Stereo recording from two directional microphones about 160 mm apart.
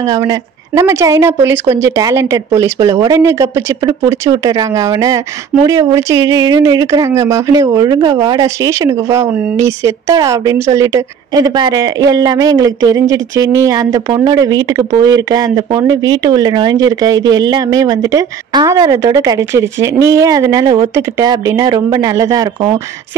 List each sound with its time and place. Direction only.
0.0 s speech: 25° right (ahead or behind)